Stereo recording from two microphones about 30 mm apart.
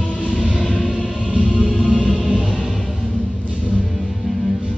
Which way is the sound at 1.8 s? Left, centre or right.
Centre.